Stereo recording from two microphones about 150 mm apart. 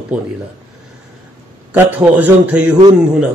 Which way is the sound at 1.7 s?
10° right (ahead or behind).